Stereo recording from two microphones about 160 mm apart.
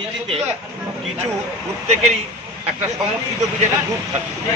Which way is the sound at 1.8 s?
45° right (ahead or behind).